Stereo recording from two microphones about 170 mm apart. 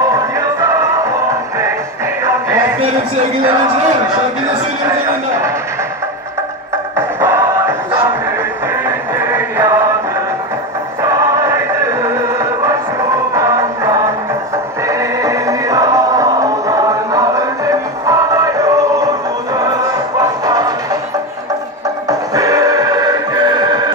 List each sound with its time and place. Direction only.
0.1 s music: 20° right (ahead or behind)
7.0 s music: 15° right (ahead or behind)
11.0 s music: 20° right (ahead or behind)
22.0 s music: 20° right (ahead or behind)